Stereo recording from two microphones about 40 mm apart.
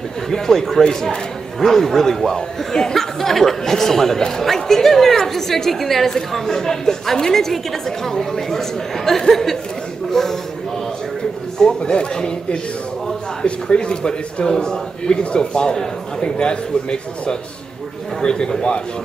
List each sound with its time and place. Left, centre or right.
0.3 s a woman's voice: centre
11.5 s a man's voice: centre